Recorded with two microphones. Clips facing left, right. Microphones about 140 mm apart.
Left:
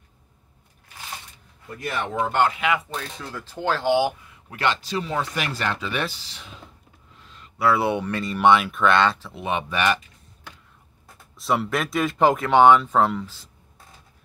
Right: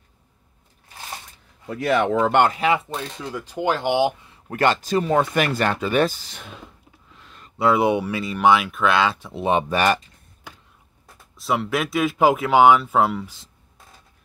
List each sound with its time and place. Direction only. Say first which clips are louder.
1.7 s speech: right 9 dB; 90° right
2.5 s speech: right 3 dB; 30° right (ahead or behind)
3.2 s speech: right 5 dB; 15° right (ahead or behind)
4.5 s speech: right 5 dB; 45° right (ahead or behind)
7.2 s a sound: right 1 dB; 50° right (ahead or behind)
7.5 s speech: right 3 dB; 20° right (ahead or behind)
9.3 s speech: right 6 dB; 35° right (ahead or behind)
11.3 s speech: right 1 dB; centre (ahead or behind)